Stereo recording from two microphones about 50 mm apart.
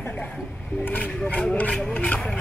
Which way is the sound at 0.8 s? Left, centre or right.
Left.